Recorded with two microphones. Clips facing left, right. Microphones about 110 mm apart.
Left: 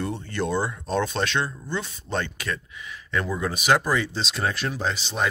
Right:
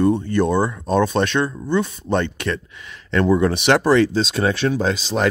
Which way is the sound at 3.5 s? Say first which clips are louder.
Right 7 dB; 75° right (ahead or behind).